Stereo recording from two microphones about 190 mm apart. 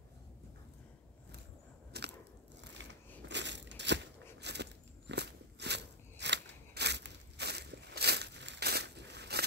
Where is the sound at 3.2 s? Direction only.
65° right (ahead or behind).